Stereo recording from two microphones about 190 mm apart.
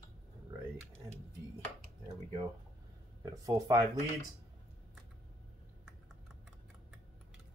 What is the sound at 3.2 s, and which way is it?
Speech, 20° right (ahead or behind).